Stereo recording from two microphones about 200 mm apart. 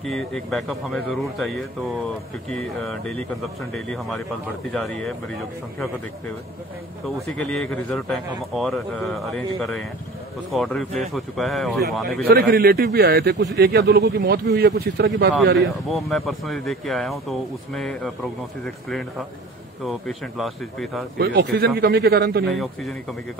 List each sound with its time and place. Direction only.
0.0 s speech: centre (ahead or behind)
7.3 s speech: 5° left (ahead or behind)
12.2 s a man's voice: 50° right (ahead or behind)
15.5 s speech: centre (ahead or behind)
19.9 s speech: centre (ahead or behind)
21.2 s a man's voice: 55° right (ahead or behind)
22.5 s speech: centre (ahead or behind)